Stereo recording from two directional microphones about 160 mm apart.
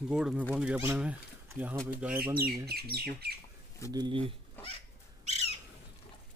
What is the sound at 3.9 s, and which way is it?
Speech, 30° right (ahead or behind).